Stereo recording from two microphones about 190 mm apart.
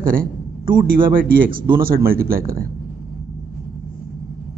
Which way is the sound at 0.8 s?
50° right (ahead or behind).